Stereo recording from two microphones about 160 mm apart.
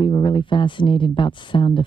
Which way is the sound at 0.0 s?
30° left (ahead or behind).